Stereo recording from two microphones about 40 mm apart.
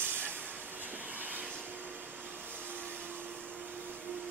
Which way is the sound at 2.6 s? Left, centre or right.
Right.